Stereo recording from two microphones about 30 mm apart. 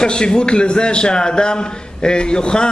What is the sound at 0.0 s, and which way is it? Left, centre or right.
A man's voice, left.